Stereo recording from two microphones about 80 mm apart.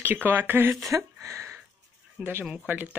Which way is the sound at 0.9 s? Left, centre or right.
Right.